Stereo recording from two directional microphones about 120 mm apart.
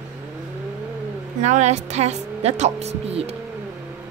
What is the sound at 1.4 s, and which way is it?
Speech, 70° right (ahead or behind).